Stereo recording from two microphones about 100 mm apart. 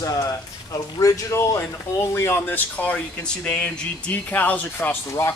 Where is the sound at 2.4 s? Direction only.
15° left (ahead or behind).